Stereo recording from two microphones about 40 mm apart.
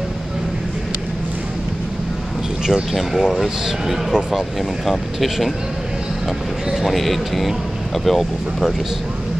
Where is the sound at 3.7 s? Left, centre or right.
Centre.